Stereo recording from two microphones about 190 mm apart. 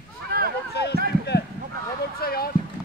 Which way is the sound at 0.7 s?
60° left (ahead or behind).